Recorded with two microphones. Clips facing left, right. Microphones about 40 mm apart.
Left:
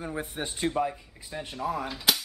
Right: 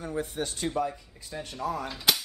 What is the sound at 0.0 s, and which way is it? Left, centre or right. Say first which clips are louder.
A man's voice: right 2 dB; centre.